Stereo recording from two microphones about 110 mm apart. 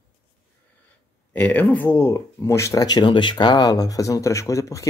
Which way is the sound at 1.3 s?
15° left (ahead or behind).